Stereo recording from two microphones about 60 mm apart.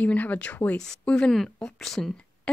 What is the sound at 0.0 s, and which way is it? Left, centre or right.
Speech, left.